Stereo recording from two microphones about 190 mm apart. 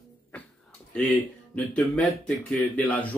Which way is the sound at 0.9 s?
10° left (ahead or behind).